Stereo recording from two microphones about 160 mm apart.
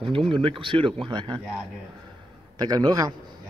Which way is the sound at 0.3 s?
30° right (ahead or behind).